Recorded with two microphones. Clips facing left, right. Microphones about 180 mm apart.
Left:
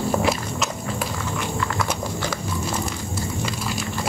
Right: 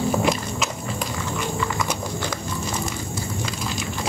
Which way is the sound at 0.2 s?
5° left (ahead or behind).